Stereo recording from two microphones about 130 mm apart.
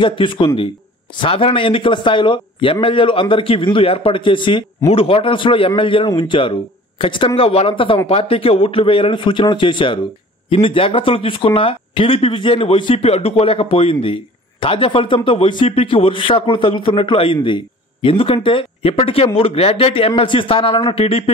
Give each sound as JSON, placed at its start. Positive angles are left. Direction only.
{"t": 0.0, "sound": "a man's voice", "side_deg": 40}